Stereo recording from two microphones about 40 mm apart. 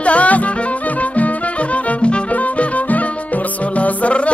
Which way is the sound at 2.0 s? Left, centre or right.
Left.